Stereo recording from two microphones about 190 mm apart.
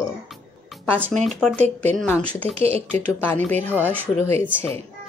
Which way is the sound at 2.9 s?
10° left (ahead or behind).